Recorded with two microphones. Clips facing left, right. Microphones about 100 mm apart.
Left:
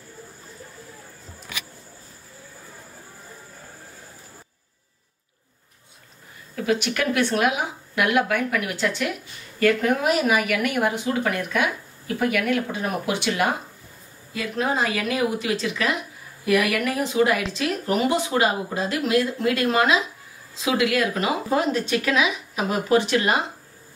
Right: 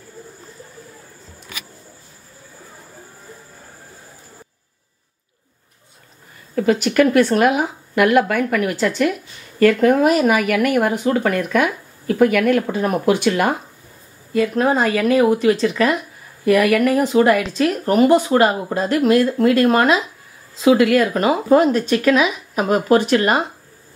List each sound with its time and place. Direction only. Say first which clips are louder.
6.5 s speech: right 7 dB; 45° right (ahead or behind)